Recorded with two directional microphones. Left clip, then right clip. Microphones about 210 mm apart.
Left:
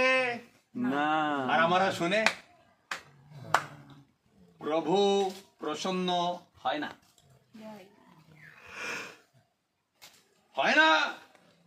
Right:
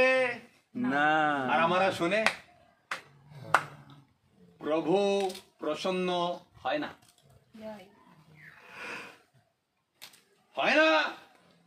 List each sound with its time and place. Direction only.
0.0 s a sound: centre (ahead or behind)
0.7 s a sound: 50° right (ahead or behind)
1.5 s speech: centre (ahead or behind)
4.6 s speech: centre (ahead or behind)
8.6 s wheeze: 55° left (ahead or behind)
10.5 s speech: centre (ahead or behind)